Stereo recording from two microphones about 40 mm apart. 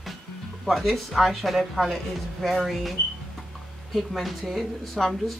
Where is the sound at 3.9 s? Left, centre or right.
Centre.